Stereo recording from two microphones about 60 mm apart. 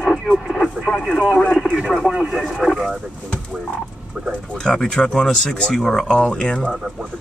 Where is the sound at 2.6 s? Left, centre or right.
Centre.